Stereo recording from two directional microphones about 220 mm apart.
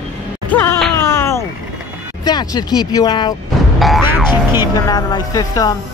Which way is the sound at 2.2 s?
20° left (ahead or behind).